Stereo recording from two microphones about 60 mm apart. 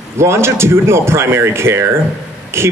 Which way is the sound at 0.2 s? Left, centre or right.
Right.